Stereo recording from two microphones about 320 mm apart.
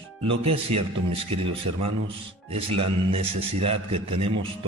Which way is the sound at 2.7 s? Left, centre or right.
Centre.